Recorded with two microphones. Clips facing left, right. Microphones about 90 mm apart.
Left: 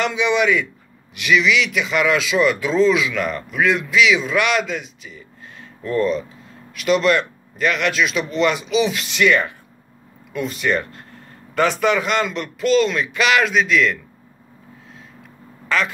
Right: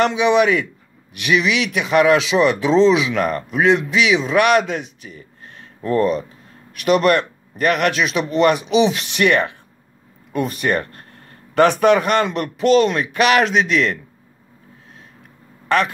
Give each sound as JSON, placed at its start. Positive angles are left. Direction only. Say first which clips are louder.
{"t": 0.1, "sound": "speech", "louder": "right 3 dB", "side_deg": -35}
{"t": 3.2, "sound": "speech", "louder": "right 3 dB", "side_deg": -40}
{"t": 4.5, "sound": "speech", "louder": "right 5 dB", "side_deg": -45}
{"t": 9.2, "sound": "speech", "louder": "right 1 dB", "side_deg": -65}
{"t": 10.3, "sound": "speech", "louder": "right 2 dB", "side_deg": -45}
{"t": 12.4, "sound": "speech", "louder": "right 2 dB", "side_deg": -40}